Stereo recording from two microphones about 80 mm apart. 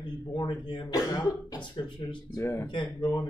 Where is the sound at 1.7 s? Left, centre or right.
Left.